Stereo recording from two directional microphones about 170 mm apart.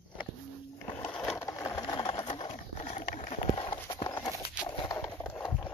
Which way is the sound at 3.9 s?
25° left (ahead or behind).